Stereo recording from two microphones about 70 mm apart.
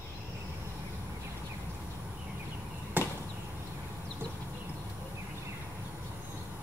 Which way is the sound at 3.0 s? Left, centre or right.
Right.